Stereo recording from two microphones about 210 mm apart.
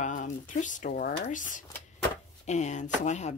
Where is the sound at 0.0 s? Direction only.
35° left (ahead or behind).